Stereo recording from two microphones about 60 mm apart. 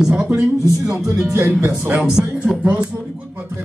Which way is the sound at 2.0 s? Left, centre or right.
Centre.